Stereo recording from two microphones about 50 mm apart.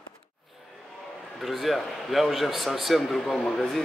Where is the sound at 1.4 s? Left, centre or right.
Centre.